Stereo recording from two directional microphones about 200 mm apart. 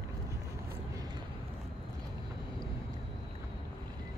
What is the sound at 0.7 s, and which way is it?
Vehicle, 20° right (ahead or behind).